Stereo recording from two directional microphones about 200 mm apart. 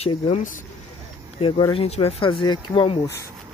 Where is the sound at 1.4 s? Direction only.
25° left (ahead or behind).